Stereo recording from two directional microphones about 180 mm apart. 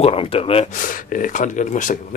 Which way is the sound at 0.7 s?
50° left (ahead or behind).